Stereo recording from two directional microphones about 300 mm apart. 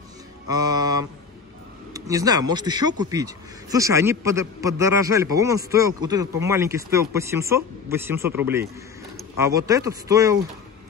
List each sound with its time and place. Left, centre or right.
0.5 s mantra: centre
2.0 s speech: centre